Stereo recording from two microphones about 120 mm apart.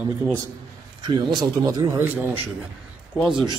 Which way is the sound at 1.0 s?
35° right (ahead or behind).